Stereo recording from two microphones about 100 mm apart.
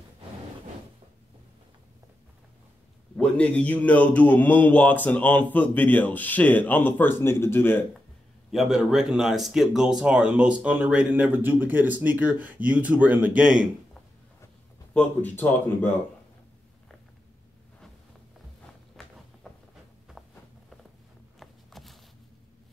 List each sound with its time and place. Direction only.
3.2 s a man's voice: 10° left (ahead or behind)
8.5 s speech: 5° right (ahead or behind)
15.0 s a man's voice: 15° left (ahead or behind)
19.0 s walk: 5° left (ahead or behind)
21.4 s walk: centre (ahead or behind)